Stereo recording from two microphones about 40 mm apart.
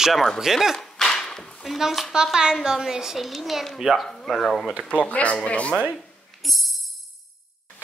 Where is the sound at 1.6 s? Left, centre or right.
Centre.